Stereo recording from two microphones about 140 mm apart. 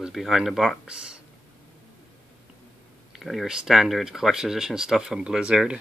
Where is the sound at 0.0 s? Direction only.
Centre (ahead or behind).